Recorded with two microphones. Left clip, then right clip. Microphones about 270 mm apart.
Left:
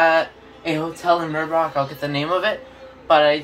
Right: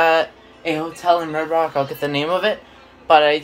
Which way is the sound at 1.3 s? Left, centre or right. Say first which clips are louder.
Right 1 dB; right.